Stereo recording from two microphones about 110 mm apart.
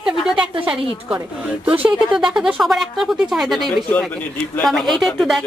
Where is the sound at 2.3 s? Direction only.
5° right (ahead or behind).